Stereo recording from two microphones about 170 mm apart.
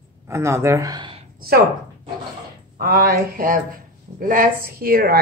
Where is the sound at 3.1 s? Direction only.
55° right (ahead or behind).